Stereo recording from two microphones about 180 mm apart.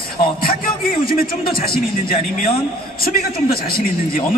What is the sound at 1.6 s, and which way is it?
A man's voice, 55° left (ahead or behind).